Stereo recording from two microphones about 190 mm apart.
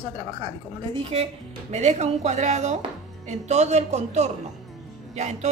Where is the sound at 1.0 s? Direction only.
35° right (ahead or behind).